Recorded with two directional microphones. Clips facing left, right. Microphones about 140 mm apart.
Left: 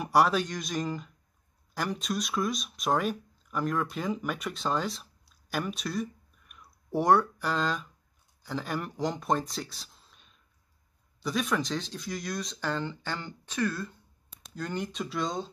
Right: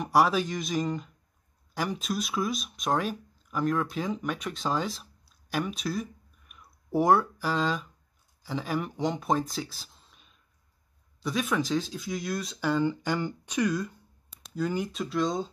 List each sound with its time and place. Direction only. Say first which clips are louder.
0.0 s speech: right 1 dB; centre (ahead or behind)